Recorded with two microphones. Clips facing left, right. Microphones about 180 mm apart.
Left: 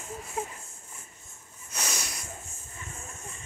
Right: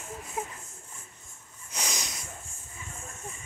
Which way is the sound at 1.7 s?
15° right (ahead or behind).